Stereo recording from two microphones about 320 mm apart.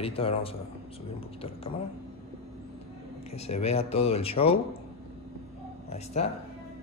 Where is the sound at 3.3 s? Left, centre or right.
Centre.